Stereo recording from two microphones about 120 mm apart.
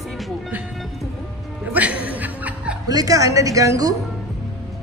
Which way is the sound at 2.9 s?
30° right (ahead or behind).